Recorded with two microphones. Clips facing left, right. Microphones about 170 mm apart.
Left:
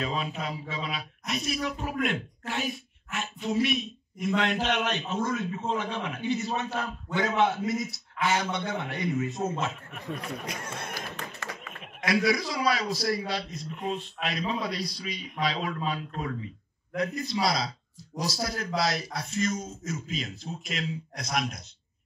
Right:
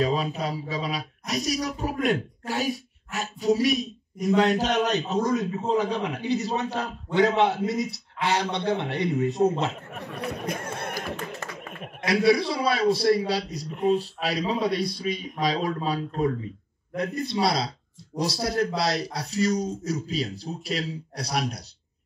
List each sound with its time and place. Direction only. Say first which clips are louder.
0.0 s speech: right 6 dB; 40° right (ahead or behind)
10.4 s music: right 6 dB; 55° right (ahead or behind)
12.0 s speech: right 5 dB; 30° right (ahead or behind)
14.8 s speech: right 7 dB; 55° right (ahead or behind); by 16.3 s 35° right (ahead or behind)
17.3 s speech: right 3 dB; 30° right (ahead or behind)